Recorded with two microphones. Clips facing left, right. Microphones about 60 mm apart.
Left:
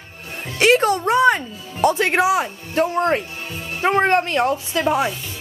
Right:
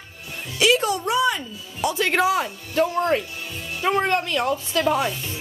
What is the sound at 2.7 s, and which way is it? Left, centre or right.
Speech, left.